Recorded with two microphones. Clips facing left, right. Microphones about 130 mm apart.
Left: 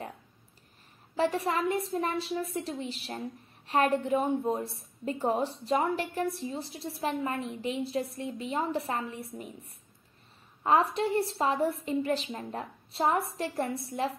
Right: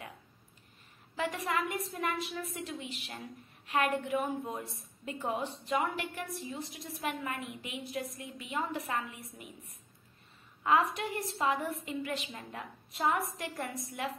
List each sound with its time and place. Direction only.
1.1 s a woman's voice: 35° left (ahead or behind)
10.6 s a woman's voice: 30° left (ahead or behind)